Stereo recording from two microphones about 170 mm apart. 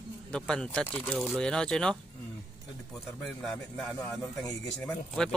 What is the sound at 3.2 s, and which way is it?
Speech, centre (ahead or behind).